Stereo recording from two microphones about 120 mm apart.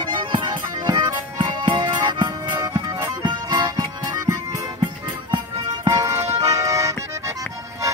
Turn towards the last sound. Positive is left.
turn(degrees=-25)  # may be behind; listen again after turning